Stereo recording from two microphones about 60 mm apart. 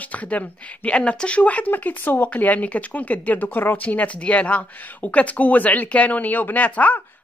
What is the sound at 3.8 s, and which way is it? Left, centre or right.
Speech, left.